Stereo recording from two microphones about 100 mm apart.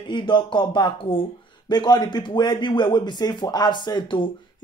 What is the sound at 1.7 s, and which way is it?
Speech, 45° left (ahead or behind).